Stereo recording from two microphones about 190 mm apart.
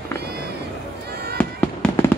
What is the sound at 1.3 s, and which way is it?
Fireworks, 10° left (ahead or behind).